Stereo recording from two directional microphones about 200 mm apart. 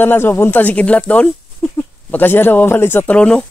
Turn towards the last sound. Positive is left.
turn(degrees=5)  # may be behind; listen again after turning